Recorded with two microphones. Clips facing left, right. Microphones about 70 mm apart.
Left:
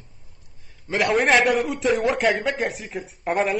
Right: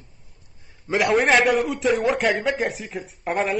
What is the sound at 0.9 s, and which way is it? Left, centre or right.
A man's voice, centre.